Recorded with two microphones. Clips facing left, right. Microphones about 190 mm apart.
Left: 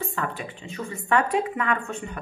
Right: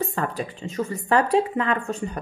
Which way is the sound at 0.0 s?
40° right (ahead or behind).